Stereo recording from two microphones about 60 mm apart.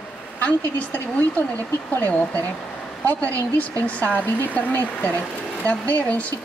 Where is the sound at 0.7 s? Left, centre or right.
Left.